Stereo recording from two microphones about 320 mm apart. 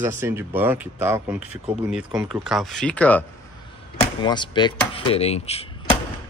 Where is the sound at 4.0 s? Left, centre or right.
Centre.